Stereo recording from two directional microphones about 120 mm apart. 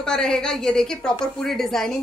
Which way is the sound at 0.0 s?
5° left (ahead or behind).